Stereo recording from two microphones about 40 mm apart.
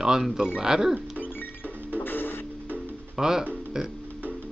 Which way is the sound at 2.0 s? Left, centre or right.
Left.